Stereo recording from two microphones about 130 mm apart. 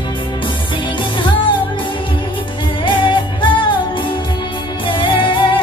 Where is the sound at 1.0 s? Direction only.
40° left (ahead or behind).